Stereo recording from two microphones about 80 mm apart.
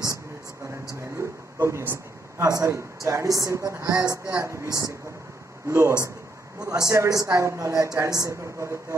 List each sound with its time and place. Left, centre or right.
1.0 s a sound: right
2.4 s a woman's voice: right
4.6 s a woman's voice: right
5.7 s a man's voice: right